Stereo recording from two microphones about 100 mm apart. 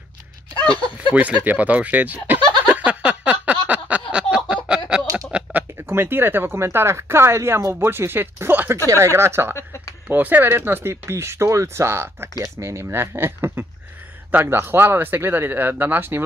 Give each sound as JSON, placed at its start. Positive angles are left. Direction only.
{"t": 0.7, "sound": "speech", "side_deg": 60}
{"t": 1.1, "sound": "speech", "side_deg": -15}
{"t": 2.6, "sound": "a sound", "side_deg": -10}
{"t": 5.3, "sound": "speech", "side_deg": -15}
{"t": 9.6, "sound": "a sound", "side_deg": 25}
{"t": 10.0, "sound": "speech", "side_deg": -20}